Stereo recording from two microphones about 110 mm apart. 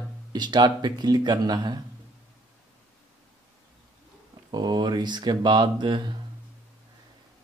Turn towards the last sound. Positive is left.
turn(degrees=-45)  # may be behind; listen again after turning